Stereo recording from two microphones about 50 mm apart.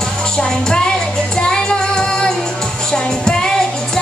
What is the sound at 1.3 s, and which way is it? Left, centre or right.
Child singing, centre.